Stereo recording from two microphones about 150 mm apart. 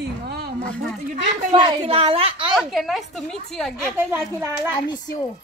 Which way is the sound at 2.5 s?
Centre (ahead or behind).